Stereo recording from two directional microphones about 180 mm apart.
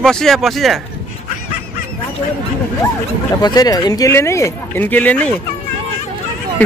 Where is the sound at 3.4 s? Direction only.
20° left (ahead or behind).